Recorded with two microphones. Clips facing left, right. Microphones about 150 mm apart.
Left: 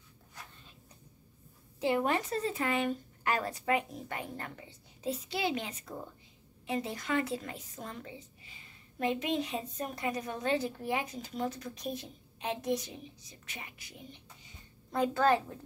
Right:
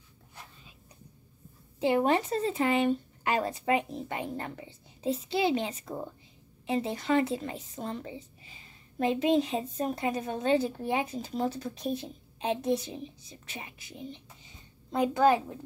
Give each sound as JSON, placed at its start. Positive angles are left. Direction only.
{"t": 1.8, "sound": "a woman's voice", "side_deg": -25}